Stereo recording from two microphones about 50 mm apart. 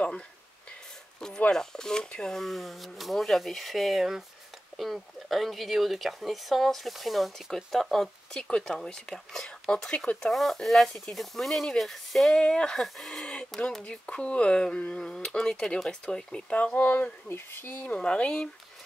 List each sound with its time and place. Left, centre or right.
1.5 s speech: centre
2.4 s speech: centre
8.3 s speech: centre
10.3 s speech: centre
12.4 s speech: centre
12.8 s speech: centre
13.1 s a sound: centre
13.6 s speech: centre
16.5 s speech: left
17.3 s speech: left
17.9 s speech: left